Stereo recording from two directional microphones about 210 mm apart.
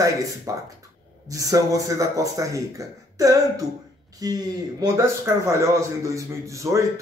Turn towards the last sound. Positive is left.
turn(degrees=-15)  # may be behind; listen again after turning